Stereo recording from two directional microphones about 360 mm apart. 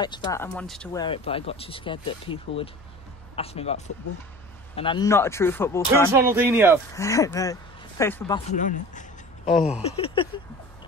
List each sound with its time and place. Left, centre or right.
0.0 s speech: centre
1.0 s speech: centre
6.1 s speech: centre
6.9 s speech: centre
8.5 s speech: left
9.5 s speech: centre
9.8 s speech: centre